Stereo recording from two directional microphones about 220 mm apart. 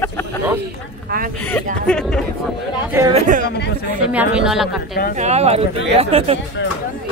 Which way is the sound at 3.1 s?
35° right (ahead or behind).